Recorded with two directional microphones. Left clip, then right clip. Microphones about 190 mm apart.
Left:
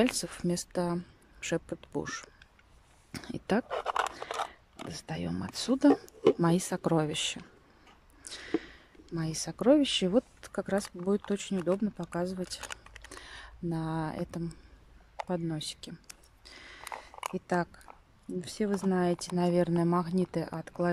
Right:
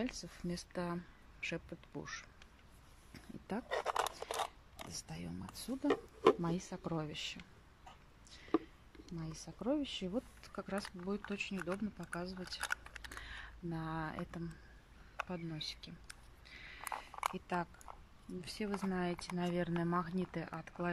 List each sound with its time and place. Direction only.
0.0 s speech: 50° left (ahead or behind)
3.1 s speech: 55° left (ahead or behind)
3.6 s a sound: centre (ahead or behind)
4.3 s biting: centre (ahead or behind)
4.8 s speech: 45° left (ahead or behind)
8.2 s a sound: 50° left (ahead or behind)
9.1 s speech: 55° left (ahead or behind)
10.4 s speech: 35° left (ahead or behind)
11.5 s speech: 25° left (ahead or behind)
12.6 s typing: 15° left (ahead or behind)
15.1 s a sound: 35° left (ahead or behind)
18.4 s speech: 30° left (ahead or behind)